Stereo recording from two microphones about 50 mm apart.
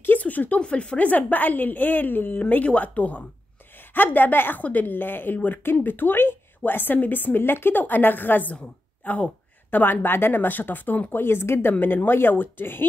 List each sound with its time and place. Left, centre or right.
0.2 s speech: left
0.6 s speech: left
2.5 s speech: left
11.8 s speech: left